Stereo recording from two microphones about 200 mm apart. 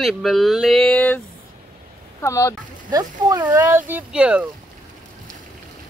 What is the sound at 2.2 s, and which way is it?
Speech, 15° left (ahead or behind).